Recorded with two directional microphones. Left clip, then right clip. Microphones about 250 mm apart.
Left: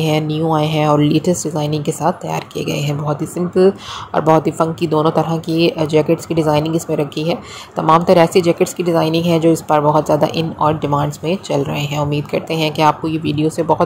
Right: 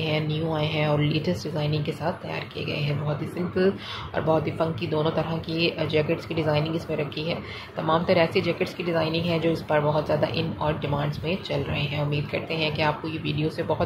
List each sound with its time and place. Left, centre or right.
0.0 s speech: left